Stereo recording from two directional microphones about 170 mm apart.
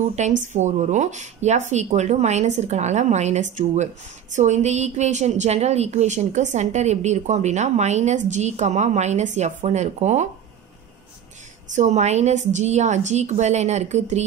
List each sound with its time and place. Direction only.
0.5 s speech: 45° right (ahead or behind)
11.7 s speech: 45° right (ahead or behind)